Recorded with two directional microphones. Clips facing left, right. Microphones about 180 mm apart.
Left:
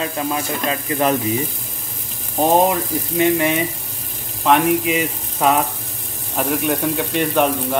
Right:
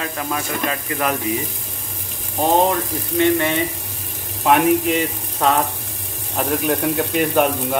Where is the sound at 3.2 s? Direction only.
15° left (ahead or behind).